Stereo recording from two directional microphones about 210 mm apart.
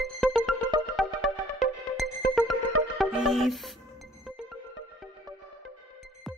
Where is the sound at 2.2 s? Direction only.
45° left (ahead or behind).